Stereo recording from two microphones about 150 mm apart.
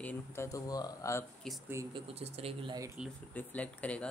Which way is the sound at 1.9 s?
40° right (ahead or behind).